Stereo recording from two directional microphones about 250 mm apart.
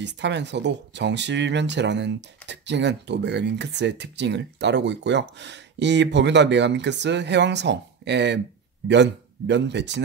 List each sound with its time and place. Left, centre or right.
0.0 s speech: right